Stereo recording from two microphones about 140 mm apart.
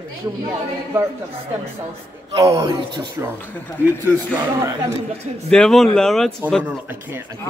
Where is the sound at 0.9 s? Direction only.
15° right (ahead or behind).